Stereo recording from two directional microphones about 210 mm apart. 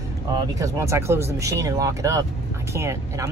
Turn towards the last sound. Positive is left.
turn(degrees=-15)  # may be behind; listen again after turning